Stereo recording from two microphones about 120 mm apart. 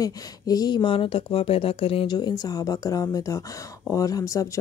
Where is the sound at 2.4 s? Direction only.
30° left (ahead or behind).